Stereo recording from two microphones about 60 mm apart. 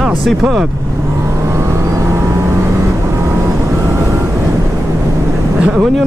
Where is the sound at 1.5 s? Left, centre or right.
Right.